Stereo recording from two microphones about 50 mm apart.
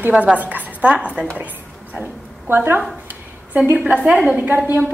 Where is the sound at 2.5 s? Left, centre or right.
Right.